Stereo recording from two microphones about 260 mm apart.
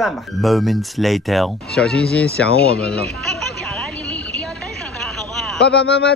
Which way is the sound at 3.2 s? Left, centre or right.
Centre.